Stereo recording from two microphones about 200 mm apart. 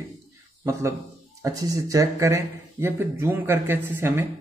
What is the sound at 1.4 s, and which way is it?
A man's voice, 15° right (ahead or behind).